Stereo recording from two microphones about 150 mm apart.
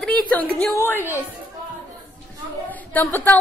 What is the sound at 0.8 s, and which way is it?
Speech, 15° left (ahead or behind).